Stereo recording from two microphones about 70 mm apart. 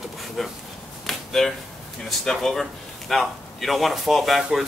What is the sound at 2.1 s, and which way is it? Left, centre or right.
A man's voice, centre.